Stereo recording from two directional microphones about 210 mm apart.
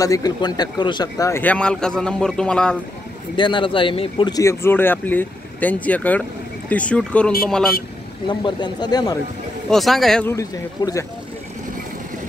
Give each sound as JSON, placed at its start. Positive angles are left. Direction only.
{"t": 0.0, "sound": "speech", "side_deg": 15}
{"t": 3.3, "sound": "speech", "side_deg": 20}
{"t": 8.3, "sound": "speech", "side_deg": 20}
{"t": 9.7, "sound": "speech", "side_deg": 0}
{"t": 10.3, "sound": "speech", "side_deg": 15}